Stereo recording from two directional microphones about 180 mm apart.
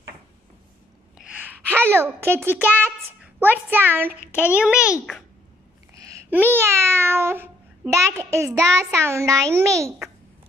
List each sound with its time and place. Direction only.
1.1 s gasp: 5° right (ahead or behind)
1.9 s a child's voice: 15° right (ahead or behind)
5.9 s babbling: 15° right (ahead or behind)
6.5 s a child's voice: 15° right (ahead or behind)